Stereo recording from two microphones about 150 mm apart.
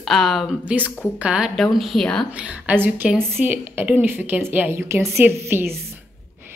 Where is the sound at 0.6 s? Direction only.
10° right (ahead or behind).